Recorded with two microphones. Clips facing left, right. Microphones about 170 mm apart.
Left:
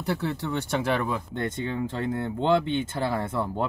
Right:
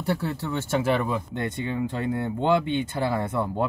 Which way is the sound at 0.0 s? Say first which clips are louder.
Right 1 dB; centre (ahead or behind).